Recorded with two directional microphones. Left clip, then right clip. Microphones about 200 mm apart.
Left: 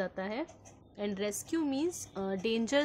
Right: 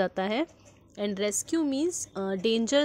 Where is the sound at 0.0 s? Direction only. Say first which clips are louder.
Right 8 dB; 40° right (ahead or behind).